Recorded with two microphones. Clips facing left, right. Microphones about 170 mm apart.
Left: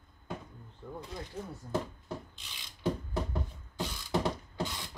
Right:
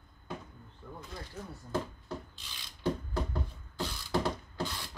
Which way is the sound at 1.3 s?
30° left (ahead or behind).